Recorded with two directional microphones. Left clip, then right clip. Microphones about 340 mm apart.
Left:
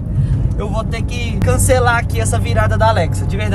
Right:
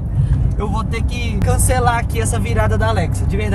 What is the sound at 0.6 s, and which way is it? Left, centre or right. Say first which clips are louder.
Speech: left 1 dB; centre.